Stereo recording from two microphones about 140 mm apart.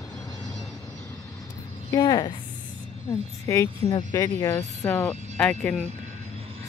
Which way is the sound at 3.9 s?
35° left (ahead or behind).